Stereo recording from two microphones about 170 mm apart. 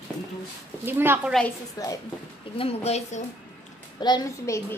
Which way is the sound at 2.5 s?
35° left (ahead or behind).